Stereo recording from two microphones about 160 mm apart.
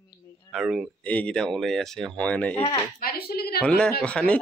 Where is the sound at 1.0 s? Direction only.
10° left (ahead or behind).